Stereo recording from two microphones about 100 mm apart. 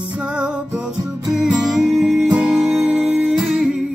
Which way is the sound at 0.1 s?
10° right (ahead or behind).